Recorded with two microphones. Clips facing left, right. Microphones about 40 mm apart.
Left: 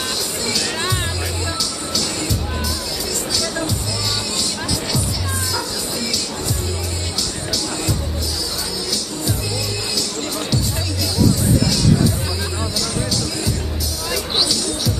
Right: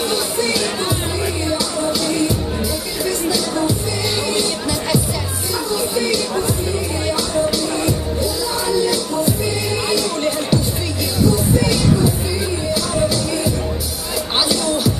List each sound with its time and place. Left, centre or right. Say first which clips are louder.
0.1 s music: right 5 dB; centre
8.6 s music: right 8 dB; right
14.5 s music: right 5 dB; right